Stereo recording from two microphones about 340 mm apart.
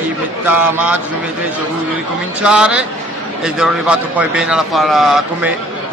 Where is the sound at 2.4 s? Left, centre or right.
Centre.